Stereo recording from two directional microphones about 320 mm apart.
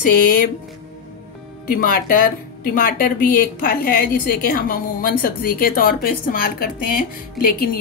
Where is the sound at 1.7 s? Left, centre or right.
Left.